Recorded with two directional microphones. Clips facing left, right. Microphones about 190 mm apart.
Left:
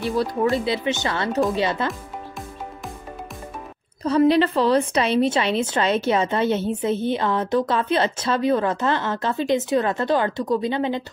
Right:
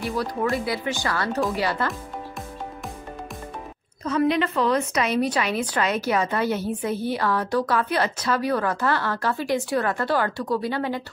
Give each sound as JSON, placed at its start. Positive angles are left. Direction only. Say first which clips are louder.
{"t": 0.0, "sound": "a woman's voice", "louder": "left 4 dB", "side_deg": 25}
{"t": 4.0, "sound": "a woman's voice", "louder": "left 5 dB", "side_deg": 30}